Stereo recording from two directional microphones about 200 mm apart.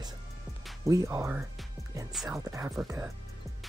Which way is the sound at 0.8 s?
15° right (ahead or behind).